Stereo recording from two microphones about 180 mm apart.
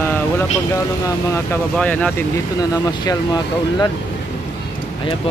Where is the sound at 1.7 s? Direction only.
10° left (ahead or behind).